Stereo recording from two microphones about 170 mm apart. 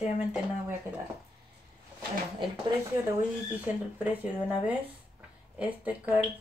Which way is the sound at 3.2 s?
10° right (ahead or behind).